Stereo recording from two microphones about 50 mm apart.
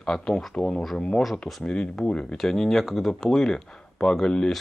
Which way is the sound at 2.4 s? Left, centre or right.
Centre.